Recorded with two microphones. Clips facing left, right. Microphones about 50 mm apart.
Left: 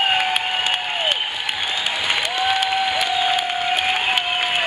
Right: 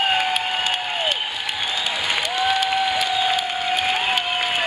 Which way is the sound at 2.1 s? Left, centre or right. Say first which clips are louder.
Even; centre.